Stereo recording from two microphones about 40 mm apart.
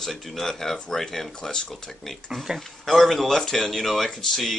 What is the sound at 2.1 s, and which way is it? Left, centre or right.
Speech, centre.